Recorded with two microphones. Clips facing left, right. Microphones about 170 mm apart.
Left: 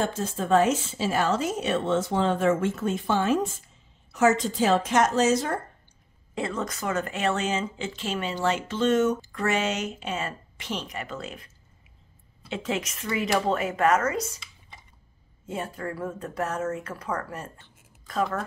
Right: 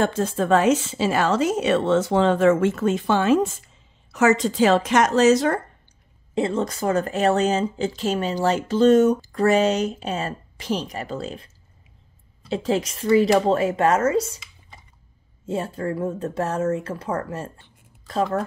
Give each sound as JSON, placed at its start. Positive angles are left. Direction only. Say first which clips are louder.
{"t": 0.0, "sound": "a woman's voice", "louder": "right 6 dB", "side_deg": -70}
{"t": 6.3, "sound": "speech", "louder": "right 7 dB", "side_deg": -30}
{"t": 15.4, "sound": "speech", "louder": "right 6 dB", "side_deg": -30}